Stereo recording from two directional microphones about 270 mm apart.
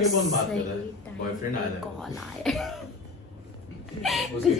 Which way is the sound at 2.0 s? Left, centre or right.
Centre.